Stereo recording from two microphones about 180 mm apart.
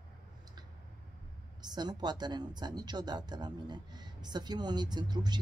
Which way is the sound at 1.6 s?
25° right (ahead or behind).